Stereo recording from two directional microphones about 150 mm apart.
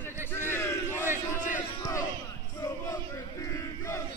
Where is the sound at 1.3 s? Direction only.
55° left (ahead or behind).